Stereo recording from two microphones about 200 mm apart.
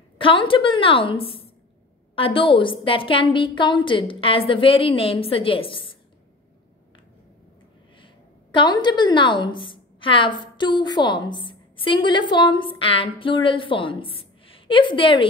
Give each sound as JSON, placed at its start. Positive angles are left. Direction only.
{"t": 0.2, "sound": "a woman's voice", "side_deg": 25}
{"t": 8.0, "sound": "a woman's voice", "side_deg": 25}